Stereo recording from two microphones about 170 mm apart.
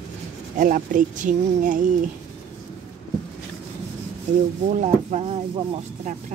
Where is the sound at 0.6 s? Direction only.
50° right (ahead or behind).